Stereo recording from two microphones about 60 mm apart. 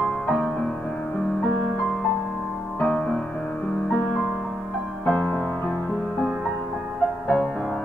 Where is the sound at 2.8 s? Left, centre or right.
Left.